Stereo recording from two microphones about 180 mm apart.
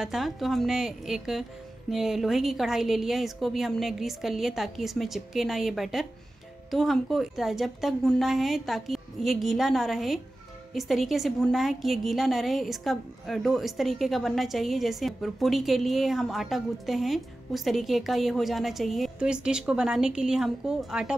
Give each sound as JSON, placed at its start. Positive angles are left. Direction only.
{"t": 0.0, "sound": "a woman's voice", "side_deg": 0}